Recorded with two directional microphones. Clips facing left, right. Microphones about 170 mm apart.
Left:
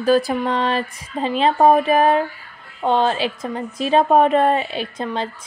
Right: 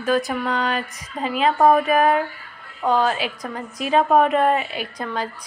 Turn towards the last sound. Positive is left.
turn(degrees=25)  # may be behind; listen again after turning